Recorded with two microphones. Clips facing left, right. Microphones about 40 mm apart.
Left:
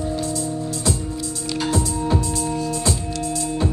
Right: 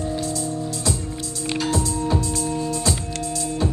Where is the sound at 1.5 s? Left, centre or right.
Centre.